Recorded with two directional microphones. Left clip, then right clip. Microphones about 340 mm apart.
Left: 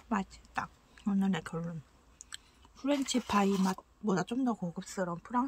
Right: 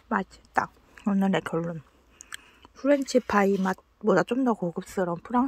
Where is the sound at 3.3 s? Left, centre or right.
Centre.